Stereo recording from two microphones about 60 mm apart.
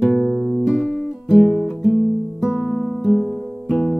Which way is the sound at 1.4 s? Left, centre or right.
Centre.